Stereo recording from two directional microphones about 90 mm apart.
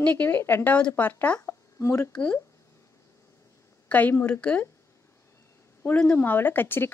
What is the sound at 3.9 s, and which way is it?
Speech, 20° left (ahead or behind).